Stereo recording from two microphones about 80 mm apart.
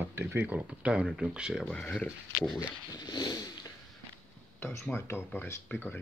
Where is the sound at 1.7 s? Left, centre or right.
Centre.